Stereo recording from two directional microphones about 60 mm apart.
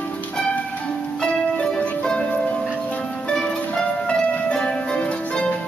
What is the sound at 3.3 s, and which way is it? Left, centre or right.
Music, centre.